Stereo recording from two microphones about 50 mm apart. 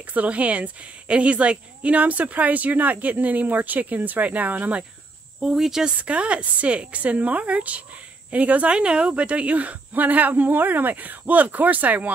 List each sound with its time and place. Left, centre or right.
0.1 s a woman's voice: right
5.4 s speech: centre
6.0 s a woman's voice: right